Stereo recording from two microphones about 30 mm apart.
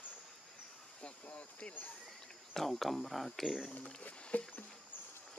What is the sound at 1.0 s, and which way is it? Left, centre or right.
Speech, left.